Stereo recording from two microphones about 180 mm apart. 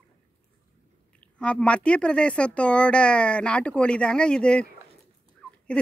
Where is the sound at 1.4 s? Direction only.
5° left (ahead or behind).